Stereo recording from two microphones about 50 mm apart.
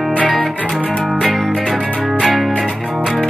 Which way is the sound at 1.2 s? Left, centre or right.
Centre.